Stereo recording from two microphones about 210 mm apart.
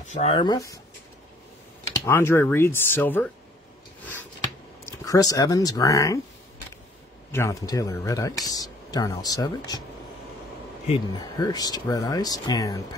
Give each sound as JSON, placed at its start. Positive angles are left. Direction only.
{"t": 0.0, "sound": "speech", "side_deg": 30}
{"t": 2.0, "sound": "speech", "side_deg": 10}
{"t": 4.0, "sound": "a sound", "side_deg": 10}
{"t": 4.8, "sound": "speech", "side_deg": 15}
{"t": 7.3, "sound": "speech", "side_deg": 15}
{"t": 11.1, "sound": "speech", "side_deg": 20}